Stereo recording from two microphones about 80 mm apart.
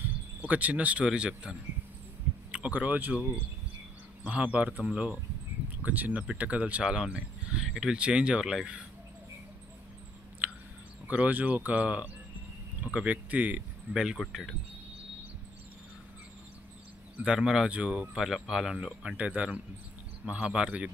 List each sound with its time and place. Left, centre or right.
0.4 s speech: centre
7.1 s a sound: centre
7.6 s speech: centre
10.4 s chewing: centre
11.1 s speech: centre
17.2 s speech: centre
18.2 s speech: centre